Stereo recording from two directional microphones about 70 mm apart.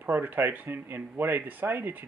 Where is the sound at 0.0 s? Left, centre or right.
Right.